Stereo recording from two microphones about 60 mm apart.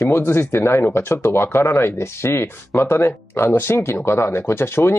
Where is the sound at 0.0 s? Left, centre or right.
Left.